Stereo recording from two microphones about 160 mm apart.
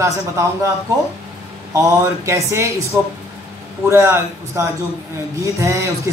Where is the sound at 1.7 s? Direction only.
20° right (ahead or behind).